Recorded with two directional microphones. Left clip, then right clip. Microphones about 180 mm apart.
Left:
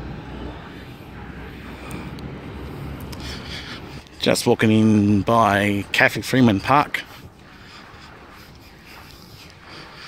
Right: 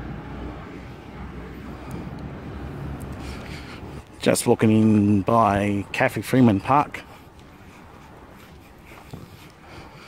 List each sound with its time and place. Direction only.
3.3 s speech: 5° right (ahead or behind)